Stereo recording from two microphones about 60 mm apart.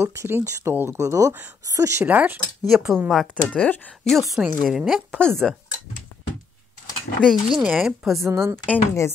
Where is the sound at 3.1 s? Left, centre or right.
Centre.